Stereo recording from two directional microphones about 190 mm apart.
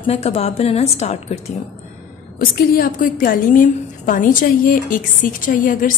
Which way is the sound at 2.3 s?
50° left (ahead or behind).